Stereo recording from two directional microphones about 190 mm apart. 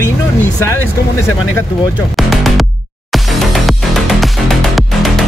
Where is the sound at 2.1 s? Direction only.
Centre (ahead or behind).